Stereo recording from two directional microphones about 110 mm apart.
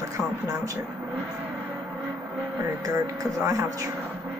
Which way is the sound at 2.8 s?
30° right (ahead or behind).